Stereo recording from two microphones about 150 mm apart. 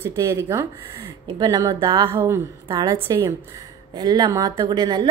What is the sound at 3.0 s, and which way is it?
A woman's voice, 20° right (ahead or behind).